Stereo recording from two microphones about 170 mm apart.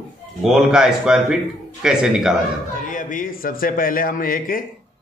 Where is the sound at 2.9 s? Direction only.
50° left (ahead or behind).